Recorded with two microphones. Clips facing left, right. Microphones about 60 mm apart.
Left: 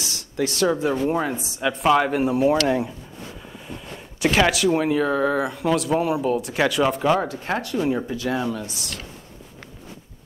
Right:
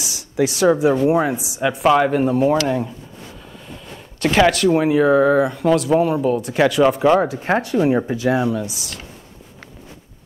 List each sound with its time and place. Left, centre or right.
0.0 s speech: centre
3.6 s a sound: centre
4.4 s speech: centre
4.6 s speech: centre
7.4 s speech: right
8.3 s speech: centre